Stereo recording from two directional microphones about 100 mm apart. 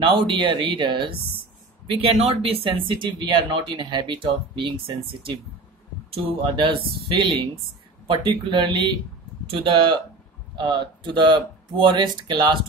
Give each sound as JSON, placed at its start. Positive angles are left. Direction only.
{"t": 0.0, "sound": "speech", "side_deg": -55}
{"t": 1.9, "sound": "speech", "side_deg": -80}
{"t": 4.3, "sound": "speech", "side_deg": -65}
{"t": 8.1, "sound": "speech", "side_deg": -55}